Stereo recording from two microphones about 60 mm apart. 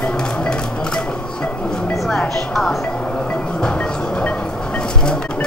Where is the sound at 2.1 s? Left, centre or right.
Centre.